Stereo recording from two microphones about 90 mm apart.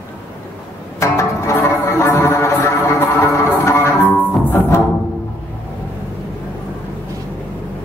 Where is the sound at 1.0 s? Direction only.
35° left (ahead or behind).